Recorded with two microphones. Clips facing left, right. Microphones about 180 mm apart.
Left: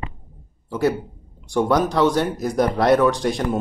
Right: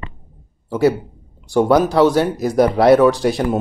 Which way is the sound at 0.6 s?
10° right (ahead or behind).